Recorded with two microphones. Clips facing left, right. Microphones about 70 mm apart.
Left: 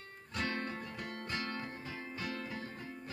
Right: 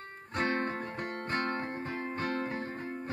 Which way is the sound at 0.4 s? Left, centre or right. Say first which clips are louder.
Right 7 dB; right.